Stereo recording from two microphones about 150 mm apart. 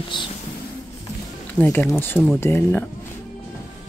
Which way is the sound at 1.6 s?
10° left (ahead or behind).